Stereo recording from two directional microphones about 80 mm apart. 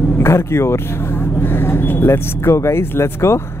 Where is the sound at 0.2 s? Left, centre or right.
Left.